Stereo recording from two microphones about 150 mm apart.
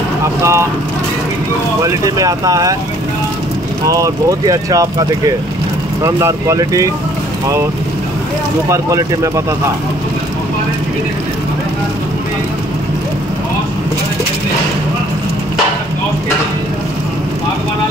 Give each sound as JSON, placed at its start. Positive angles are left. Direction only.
{"t": 0.4, "sound": "speech", "side_deg": -20}
{"t": 1.9, "sound": "speech", "side_deg": -25}
{"t": 3.8, "sound": "speech", "side_deg": -20}
{"t": 8.6, "sound": "speech", "side_deg": -20}